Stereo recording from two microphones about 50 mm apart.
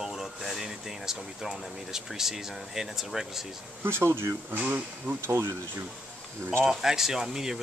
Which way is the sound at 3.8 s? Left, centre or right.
Right.